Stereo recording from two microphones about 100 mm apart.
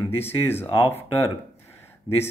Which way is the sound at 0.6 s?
70° left (ahead or behind).